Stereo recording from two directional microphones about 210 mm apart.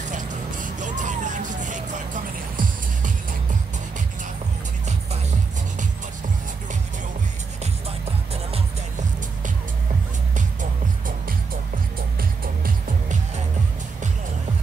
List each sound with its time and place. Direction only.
0.1 s music: 35° right (ahead or behind)
10.3 s music: 40° right (ahead or behind)